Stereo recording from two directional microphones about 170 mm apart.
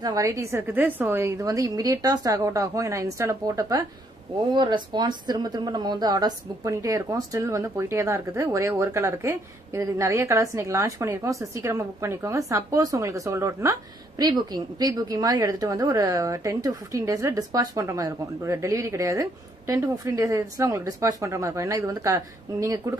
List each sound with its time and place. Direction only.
0.0 s a woman's voice: 20° right (ahead or behind)